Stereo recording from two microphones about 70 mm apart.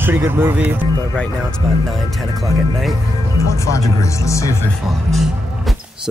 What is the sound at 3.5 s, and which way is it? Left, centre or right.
Speech, left.